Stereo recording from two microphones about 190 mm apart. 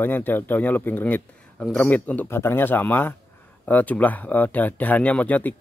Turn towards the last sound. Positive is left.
turn(degrees=10)  # may be behind; listen again after turning